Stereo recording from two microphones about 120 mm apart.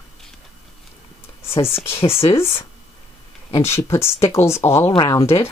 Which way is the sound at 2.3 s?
20° left (ahead or behind).